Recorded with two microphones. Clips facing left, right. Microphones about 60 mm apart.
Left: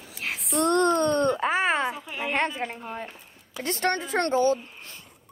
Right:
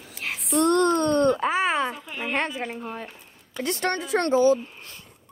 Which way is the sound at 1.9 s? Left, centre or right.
Centre.